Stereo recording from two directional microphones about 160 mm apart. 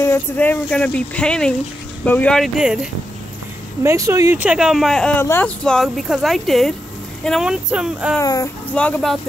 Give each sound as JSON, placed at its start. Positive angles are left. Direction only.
{"t": 0.0, "sound": "speech", "side_deg": 15}
{"t": 3.8, "sound": "speech", "side_deg": -20}
{"t": 5.2, "sound": "speech", "side_deg": 15}
{"t": 5.6, "sound": "speech", "side_deg": 5}
{"t": 8.2, "sound": "speech", "side_deg": 20}
{"t": 8.7, "sound": "speech", "side_deg": 10}